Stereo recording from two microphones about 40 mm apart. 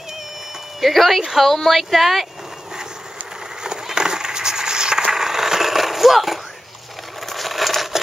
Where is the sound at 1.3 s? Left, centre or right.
Centre.